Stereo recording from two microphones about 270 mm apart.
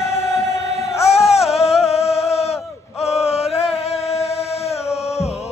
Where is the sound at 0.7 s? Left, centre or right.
Left.